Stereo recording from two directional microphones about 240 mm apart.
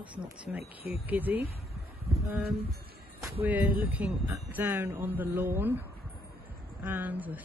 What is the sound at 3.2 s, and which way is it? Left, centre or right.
Speech, centre.